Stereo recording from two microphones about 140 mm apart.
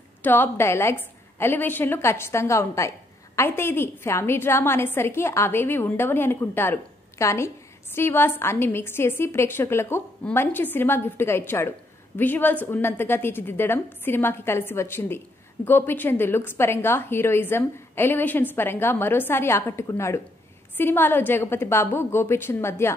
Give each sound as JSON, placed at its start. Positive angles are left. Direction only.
{"t": 0.2, "sound": "a woman's voice", "side_deg": 15}